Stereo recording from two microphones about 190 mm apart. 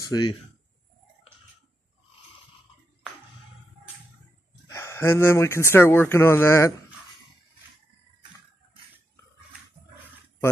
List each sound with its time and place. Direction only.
0.0 s speech: 20° left (ahead or behind)
4.6 s speech: 15° left (ahead or behind)